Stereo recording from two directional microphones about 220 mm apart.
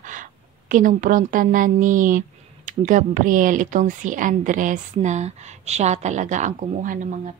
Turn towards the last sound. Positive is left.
turn(degrees=-35)  # may be behind; listen again after turning